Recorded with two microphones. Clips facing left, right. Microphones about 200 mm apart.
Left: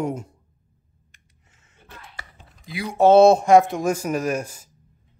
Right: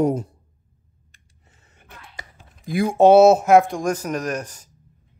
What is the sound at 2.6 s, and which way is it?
Speech, 50° right (ahead or behind).